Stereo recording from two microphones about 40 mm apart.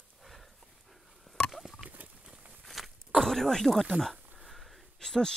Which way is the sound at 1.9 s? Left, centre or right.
Right.